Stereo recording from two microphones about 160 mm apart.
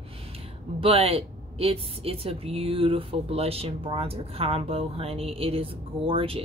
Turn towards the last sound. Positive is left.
turn(degrees=-35)  # may be behind; listen again after turning